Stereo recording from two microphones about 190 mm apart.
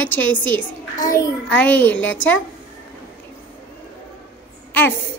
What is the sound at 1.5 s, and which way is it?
Speech, 5° left (ahead or behind).